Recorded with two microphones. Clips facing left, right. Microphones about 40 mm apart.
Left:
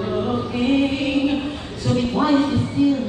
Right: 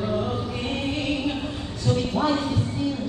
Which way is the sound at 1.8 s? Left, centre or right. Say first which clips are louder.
Left 4 dB; centre.